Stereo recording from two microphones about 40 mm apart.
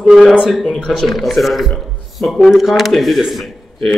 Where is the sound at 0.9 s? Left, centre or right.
Centre.